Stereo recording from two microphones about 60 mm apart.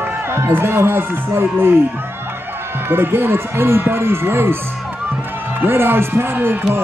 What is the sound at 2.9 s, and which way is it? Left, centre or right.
Speech, right.